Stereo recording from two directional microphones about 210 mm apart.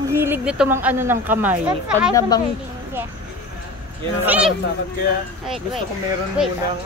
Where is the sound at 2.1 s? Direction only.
20° left (ahead or behind).